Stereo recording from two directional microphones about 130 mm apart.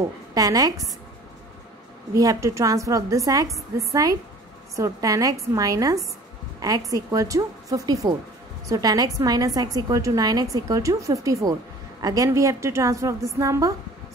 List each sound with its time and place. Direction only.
0.3 s a woman's voice: 30° right (ahead or behind)
2.1 s a woman's voice: 25° right (ahead or behind)